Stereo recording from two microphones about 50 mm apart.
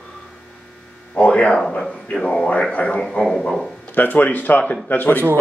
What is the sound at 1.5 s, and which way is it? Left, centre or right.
Speech, centre.